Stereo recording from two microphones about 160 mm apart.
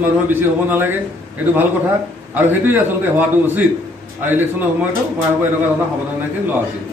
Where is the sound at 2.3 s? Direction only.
10° right (ahead or behind).